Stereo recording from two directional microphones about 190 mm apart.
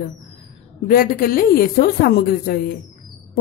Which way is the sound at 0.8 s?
50° left (ahead or behind).